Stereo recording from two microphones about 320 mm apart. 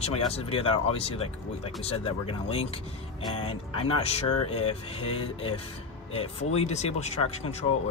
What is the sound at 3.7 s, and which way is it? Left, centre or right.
Speech, centre.